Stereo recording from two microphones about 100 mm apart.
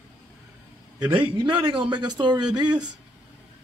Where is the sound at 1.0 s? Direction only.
50° right (ahead or behind).